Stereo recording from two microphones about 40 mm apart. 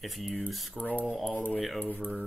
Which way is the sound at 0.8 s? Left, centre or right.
Left.